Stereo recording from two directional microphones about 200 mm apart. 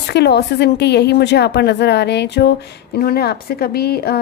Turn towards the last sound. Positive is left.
turn(degrees=50)  # may be behind; listen again after turning